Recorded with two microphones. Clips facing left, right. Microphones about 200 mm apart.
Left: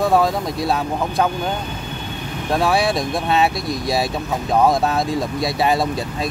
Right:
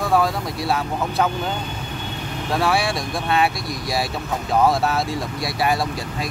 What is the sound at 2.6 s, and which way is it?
Speech, 20° left (ahead or behind).